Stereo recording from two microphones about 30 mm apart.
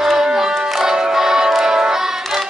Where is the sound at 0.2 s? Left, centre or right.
Centre.